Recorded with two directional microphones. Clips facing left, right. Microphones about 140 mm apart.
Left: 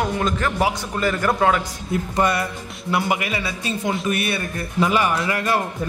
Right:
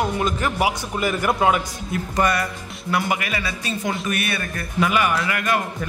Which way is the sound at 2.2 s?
25° left (ahead or behind).